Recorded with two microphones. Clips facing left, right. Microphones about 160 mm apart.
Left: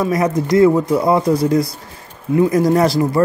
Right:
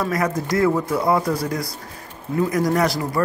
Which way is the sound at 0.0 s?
20° left (ahead or behind).